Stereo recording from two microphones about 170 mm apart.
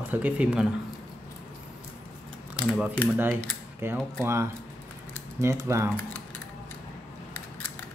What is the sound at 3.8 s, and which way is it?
Speech, 15° right (ahead or behind).